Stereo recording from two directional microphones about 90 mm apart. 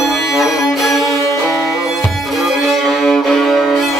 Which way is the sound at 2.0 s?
Centre (ahead or behind).